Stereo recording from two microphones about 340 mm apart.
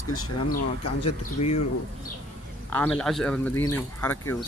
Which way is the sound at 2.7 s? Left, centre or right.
Centre.